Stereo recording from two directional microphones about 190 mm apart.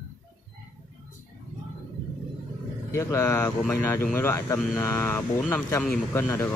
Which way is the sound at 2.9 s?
15° left (ahead or behind).